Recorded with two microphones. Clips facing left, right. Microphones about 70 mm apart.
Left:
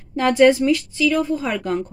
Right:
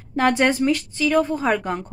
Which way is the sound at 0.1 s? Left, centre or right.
Right.